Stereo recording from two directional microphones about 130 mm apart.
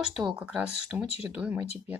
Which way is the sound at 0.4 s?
10° right (ahead or behind).